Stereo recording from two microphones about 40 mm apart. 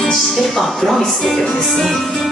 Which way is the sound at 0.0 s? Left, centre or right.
Centre.